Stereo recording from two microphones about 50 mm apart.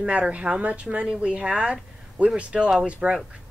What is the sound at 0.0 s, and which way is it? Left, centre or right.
Speech, right.